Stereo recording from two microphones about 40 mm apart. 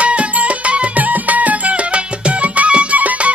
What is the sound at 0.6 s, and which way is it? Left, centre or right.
Music, right.